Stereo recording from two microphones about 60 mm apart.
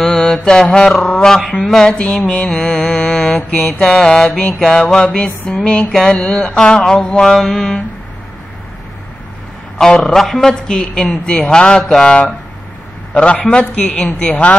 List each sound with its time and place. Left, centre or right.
0.0 s mantra: centre
3.3 s a man's voice: left
3.8 s mantra: centre
9.8 s mantra: centre
13.1 s a man's voice: left